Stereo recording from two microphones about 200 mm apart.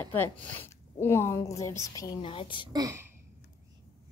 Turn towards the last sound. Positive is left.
turn(degrees=-15)  # may be behind; listen again after turning